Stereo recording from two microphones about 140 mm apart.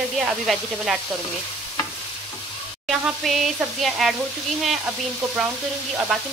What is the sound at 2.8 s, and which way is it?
Speech, centre (ahead or behind).